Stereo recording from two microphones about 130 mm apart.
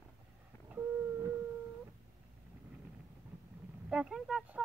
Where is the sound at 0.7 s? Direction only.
15° right (ahead or behind).